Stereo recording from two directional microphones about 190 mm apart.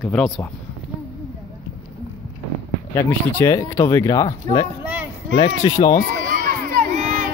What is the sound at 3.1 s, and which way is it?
Speech, 15° left (ahead or behind).